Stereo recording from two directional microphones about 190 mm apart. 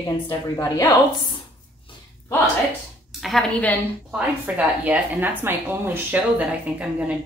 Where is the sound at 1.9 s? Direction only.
25° left (ahead or behind).